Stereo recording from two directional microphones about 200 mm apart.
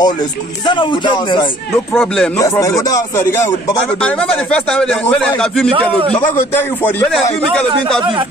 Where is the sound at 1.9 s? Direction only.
5° left (ahead or behind).